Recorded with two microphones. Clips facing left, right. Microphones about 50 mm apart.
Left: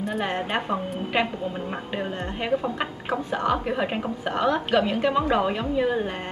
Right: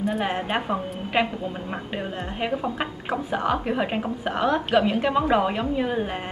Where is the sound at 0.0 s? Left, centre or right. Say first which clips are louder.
Right 1 dB; centre.